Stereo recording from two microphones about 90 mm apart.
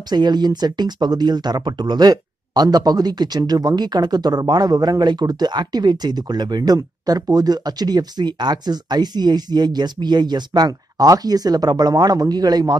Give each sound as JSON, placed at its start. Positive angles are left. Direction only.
{"t": 0.1, "sound": "speech", "side_deg": -50}